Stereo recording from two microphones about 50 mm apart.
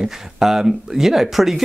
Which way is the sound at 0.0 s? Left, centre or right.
Centre.